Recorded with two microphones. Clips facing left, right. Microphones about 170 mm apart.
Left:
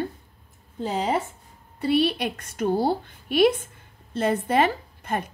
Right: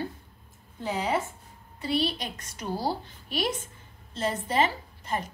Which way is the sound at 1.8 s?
60° left (ahead or behind).